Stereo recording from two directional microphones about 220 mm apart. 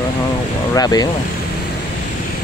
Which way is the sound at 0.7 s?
15° left (ahead or behind).